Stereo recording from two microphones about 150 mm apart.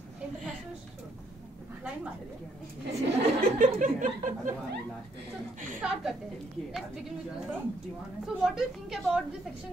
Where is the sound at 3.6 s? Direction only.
60° right (ahead or behind).